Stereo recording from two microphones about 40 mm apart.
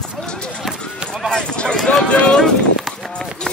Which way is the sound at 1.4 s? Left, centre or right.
Left.